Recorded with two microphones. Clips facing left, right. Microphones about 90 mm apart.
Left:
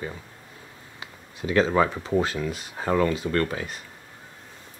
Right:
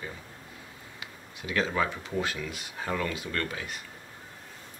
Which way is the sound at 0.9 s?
35° left (ahead or behind).